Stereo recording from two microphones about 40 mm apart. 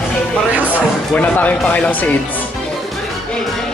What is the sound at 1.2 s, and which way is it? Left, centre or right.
Speech, left.